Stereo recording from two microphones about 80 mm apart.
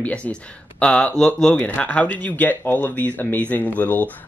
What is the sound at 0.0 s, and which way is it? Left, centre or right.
Speech, centre.